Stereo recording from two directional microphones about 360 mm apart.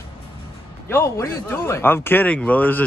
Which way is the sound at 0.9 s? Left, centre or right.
Centre.